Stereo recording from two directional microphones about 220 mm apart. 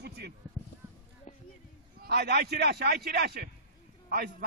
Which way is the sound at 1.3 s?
35° left (ahead or behind).